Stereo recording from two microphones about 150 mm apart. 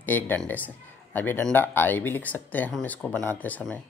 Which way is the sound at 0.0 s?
10° left (ahead or behind).